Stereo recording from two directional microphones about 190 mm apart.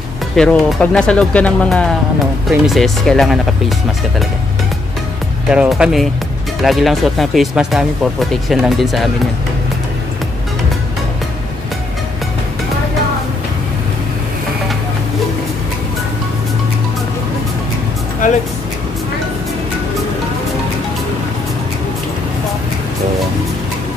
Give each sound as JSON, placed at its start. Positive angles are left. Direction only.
{"t": 0.4, "sound": "speech", "side_deg": 5}
{"t": 5.5, "sound": "speech", "side_deg": -5}
{"t": 18.2, "sound": "music", "side_deg": 45}